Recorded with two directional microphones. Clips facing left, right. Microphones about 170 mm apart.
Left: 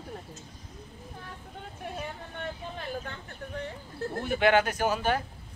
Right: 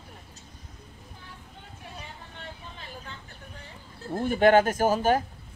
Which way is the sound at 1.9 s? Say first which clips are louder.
Left 6 dB; 55° left (ahead or behind).